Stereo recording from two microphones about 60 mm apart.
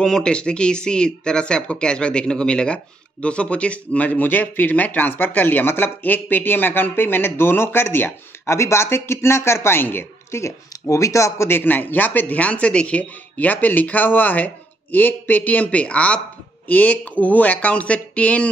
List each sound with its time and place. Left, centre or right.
0.0 s speech: centre; by 8.1 s left
8.5 s speech: left
10.3 s speech: left
11.4 s speech: left